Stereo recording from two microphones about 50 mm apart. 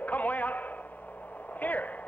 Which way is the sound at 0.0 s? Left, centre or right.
Left.